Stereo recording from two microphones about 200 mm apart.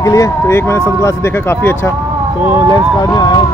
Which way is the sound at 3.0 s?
20° left (ahead or behind).